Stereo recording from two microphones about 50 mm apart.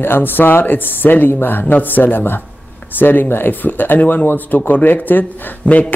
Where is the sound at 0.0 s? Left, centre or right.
Left.